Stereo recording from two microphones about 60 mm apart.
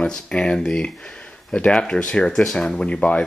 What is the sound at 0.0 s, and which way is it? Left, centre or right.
Speech, centre.